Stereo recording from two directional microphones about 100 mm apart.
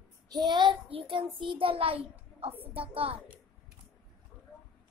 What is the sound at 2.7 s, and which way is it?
Speech, 65° right (ahead or behind).